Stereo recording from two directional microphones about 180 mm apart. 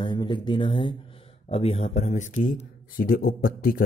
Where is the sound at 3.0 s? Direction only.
55° left (ahead or behind).